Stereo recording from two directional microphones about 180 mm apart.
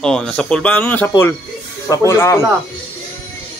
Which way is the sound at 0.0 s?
5° left (ahead or behind).